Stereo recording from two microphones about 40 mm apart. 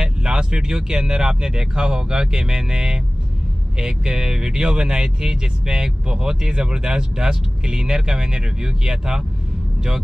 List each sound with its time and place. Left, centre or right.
0.0 s speech: centre